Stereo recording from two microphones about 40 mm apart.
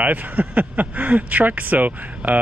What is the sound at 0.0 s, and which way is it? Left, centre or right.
Speech, right.